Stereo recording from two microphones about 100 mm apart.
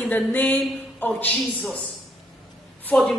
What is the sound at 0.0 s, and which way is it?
A woman's voice, 15° left (ahead or behind).